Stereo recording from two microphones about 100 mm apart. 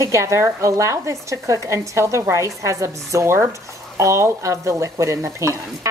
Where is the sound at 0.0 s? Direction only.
30° right (ahead or behind).